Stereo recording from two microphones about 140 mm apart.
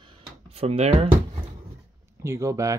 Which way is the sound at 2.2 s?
20° right (ahead or behind).